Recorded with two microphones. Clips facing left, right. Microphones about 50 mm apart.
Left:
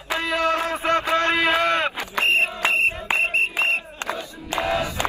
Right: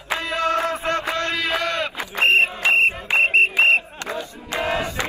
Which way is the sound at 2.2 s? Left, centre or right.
Right.